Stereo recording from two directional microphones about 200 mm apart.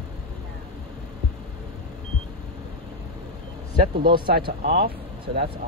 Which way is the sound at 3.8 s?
50° right (ahead or behind).